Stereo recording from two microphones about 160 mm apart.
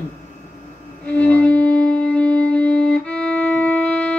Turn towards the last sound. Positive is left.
turn(degrees=5)  # may be behind; listen again after turning